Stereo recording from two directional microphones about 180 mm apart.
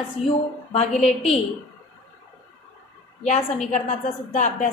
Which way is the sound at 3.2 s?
40° left (ahead or behind).